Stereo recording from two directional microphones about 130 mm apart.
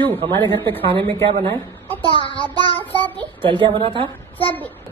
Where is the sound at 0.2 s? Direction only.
40° right (ahead or behind).